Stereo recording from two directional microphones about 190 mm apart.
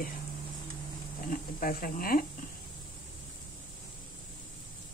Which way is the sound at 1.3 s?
45° left (ahead or behind).